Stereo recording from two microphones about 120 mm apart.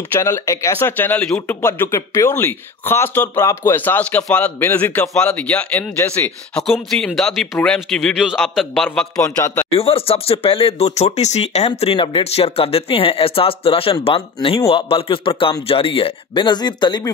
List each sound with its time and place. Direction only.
0.1 s a man's voice: 20° left (ahead or behind); by 8.8 s centre (ahead or behind)
9.2 s a man's voice: 20° left (ahead or behind)
9.7 s speech: 55° left (ahead or behind)
11.8 s speech: 50° left (ahead or behind)